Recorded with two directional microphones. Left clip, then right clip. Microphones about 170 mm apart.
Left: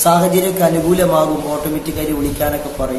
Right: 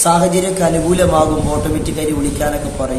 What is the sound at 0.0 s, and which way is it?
A man's voice, centre (ahead or behind).